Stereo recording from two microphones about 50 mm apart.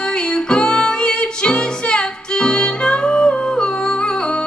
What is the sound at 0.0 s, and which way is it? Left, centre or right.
Music, centre.